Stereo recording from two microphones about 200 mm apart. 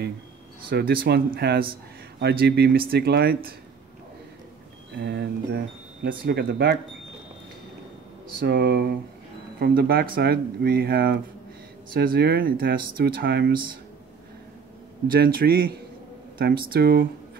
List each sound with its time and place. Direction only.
0.7 s speech: 50° right (ahead or behind)
4.9 s speech: 55° right (ahead or behind)
8.5 s speech: 55° right (ahead or behind)
15.0 s speech: 50° right (ahead or behind)